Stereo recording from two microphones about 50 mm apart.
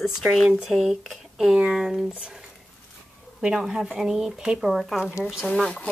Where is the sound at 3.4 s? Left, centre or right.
Centre.